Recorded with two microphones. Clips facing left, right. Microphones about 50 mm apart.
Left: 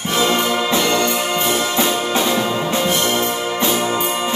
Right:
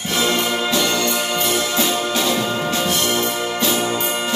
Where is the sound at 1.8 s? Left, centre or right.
Left.